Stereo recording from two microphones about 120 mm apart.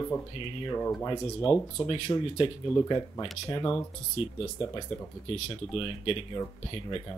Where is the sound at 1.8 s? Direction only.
45° left (ahead or behind).